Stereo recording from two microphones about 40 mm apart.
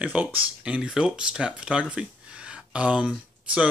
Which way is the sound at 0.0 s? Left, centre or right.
Right.